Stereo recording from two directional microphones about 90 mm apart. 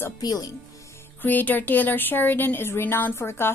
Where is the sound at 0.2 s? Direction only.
45° left (ahead or behind).